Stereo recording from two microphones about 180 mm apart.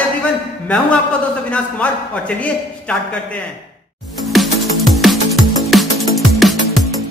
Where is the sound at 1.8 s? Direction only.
5° left (ahead or behind).